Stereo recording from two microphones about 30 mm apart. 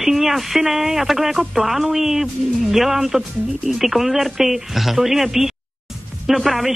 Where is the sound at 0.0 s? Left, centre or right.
Centre.